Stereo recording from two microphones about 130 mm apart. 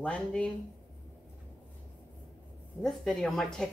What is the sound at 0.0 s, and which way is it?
Speech, 10° left (ahead or behind).